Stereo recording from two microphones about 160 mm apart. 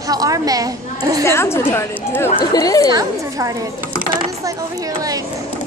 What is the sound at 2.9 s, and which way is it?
A woman's voice, 20° right (ahead or behind).